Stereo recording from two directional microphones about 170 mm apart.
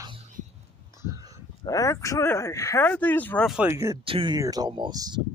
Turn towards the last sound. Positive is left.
turn(degrees=-25)  # may be behind; listen again after turning